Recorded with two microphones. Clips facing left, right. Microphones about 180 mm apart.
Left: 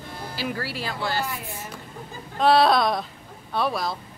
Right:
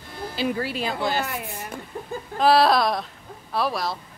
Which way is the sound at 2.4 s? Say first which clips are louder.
Even; centre (ahead or behind).